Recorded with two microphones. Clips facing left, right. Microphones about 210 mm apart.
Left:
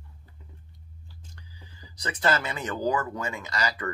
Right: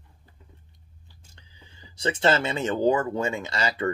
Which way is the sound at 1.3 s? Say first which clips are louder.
Right 1 dB; 25° right (ahead or behind).